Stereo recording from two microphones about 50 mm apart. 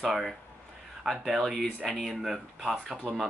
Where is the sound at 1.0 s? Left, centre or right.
Centre.